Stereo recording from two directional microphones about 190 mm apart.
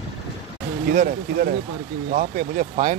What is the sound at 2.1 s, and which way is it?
Speech, 45° right (ahead or behind).